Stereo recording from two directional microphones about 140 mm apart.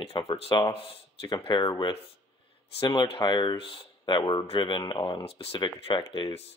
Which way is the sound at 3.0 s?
35° left (ahead or behind).